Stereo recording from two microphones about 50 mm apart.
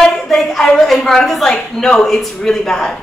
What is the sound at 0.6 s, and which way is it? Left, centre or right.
A woman's voice, centre.